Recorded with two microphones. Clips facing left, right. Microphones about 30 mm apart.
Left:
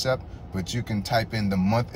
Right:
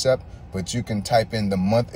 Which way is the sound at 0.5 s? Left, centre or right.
Right.